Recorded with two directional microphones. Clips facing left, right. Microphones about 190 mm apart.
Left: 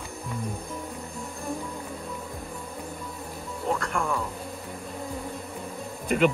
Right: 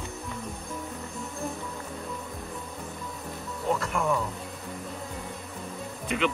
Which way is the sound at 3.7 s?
Centre (ahead or behind).